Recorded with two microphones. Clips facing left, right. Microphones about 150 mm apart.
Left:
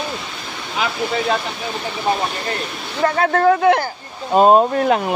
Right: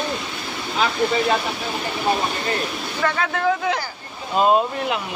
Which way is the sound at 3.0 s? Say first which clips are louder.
Left 7 dB; 40° left (ahead or behind).